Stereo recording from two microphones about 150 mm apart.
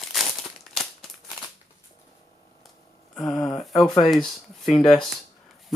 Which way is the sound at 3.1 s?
5° left (ahead or behind).